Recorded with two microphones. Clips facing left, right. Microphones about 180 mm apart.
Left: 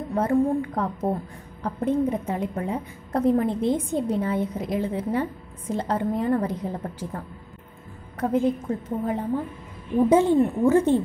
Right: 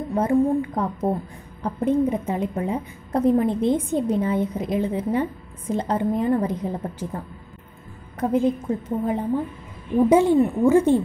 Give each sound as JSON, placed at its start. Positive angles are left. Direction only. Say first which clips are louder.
{"t": 0.1, "sound": "a woman's voice", "louder": "right 2 dB", "side_deg": -15}
{"t": 8.2, "sound": "a woman's voice", "louder": "right 2 dB", "side_deg": -20}